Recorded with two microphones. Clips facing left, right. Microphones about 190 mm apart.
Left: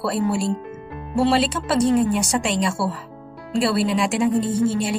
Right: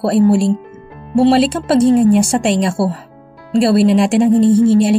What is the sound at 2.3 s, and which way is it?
Speech, 50° right (ahead or behind).